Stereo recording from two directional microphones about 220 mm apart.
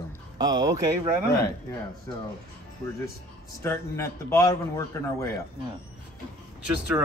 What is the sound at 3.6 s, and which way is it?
Speech, 10° left (ahead or behind).